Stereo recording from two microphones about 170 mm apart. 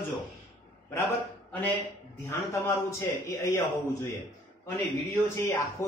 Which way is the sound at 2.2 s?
15° left (ahead or behind).